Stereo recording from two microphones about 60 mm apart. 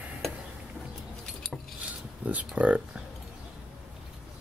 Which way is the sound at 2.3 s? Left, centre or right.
Right.